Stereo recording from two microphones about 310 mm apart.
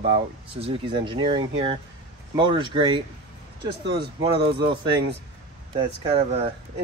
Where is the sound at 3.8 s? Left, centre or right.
Right.